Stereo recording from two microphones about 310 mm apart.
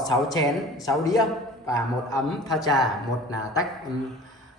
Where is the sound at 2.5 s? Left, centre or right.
Centre.